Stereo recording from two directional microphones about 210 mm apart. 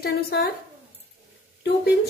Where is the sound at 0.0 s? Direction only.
50° left (ahead or behind).